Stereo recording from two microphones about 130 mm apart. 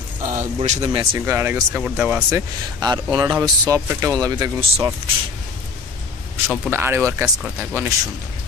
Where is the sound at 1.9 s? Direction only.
5° right (ahead or behind).